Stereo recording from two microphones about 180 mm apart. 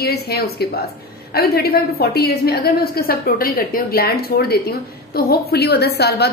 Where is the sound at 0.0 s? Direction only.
60° left (ahead or behind).